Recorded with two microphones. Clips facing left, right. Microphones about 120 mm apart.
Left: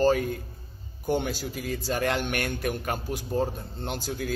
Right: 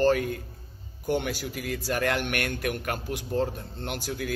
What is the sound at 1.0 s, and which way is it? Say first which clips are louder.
A man's voice: left 1 dB; 30° left (ahead or behind).